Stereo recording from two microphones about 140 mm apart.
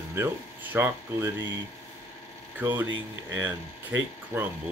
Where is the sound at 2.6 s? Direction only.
15° right (ahead or behind).